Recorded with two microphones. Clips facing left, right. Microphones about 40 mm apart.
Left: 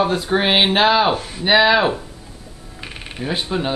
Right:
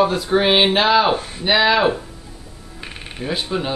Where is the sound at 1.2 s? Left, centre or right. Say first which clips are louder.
Left 1 dB; centre.